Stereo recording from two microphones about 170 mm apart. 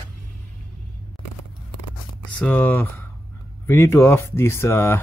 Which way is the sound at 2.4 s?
10° left (ahead or behind).